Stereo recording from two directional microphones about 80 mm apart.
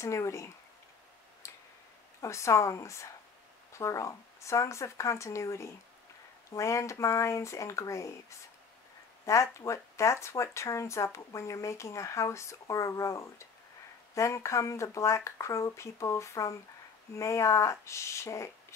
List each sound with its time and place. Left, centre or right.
0.0 s speech: left
2.2 s speech: left